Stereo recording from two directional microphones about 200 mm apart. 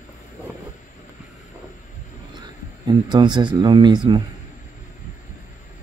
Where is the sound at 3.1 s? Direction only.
25° right (ahead or behind).